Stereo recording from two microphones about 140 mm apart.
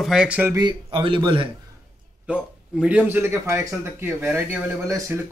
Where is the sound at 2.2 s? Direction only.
5° right (ahead or behind); by 5.2 s 20° right (ahead or behind).